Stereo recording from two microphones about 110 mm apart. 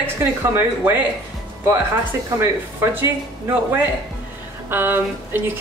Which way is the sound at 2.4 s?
20° right (ahead or behind).